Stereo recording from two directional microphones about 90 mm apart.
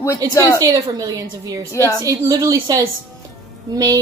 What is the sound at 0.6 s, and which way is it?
A woman's voice, 45° right (ahead or behind).